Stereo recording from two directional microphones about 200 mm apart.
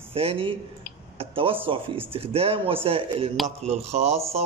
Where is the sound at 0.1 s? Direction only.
30° right (ahead or behind).